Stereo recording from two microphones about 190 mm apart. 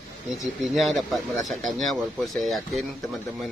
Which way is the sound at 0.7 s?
Centre (ahead or behind).